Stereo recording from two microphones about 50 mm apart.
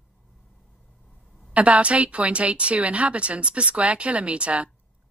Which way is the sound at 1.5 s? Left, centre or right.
Right.